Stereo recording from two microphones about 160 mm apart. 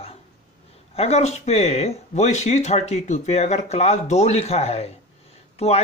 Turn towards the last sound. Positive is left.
turn(degrees=40)  # may be behind; listen again after turning